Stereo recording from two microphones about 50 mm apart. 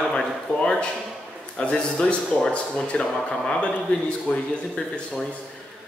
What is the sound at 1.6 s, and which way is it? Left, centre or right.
Speech, centre.